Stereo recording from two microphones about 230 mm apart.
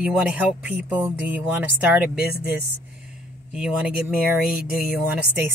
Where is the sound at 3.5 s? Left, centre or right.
Centre.